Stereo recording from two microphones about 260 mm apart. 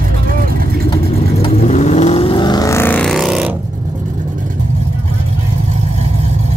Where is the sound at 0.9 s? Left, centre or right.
Left; by 3.5 s centre.